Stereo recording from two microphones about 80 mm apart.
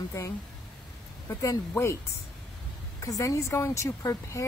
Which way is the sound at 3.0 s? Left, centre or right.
Left.